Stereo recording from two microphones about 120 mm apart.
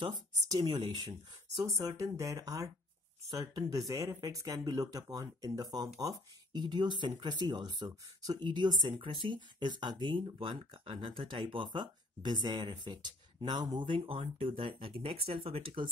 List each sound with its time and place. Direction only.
0.0 s speech: 35° right (ahead or behind)